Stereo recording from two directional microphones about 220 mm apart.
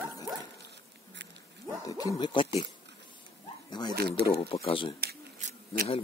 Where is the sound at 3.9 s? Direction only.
45° right (ahead or behind).